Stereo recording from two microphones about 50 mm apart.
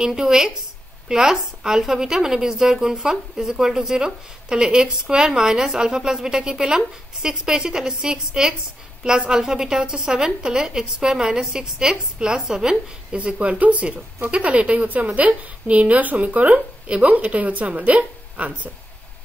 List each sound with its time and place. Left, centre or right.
0.0 s a woman's voice: centre
13.2 s a woman's voice: right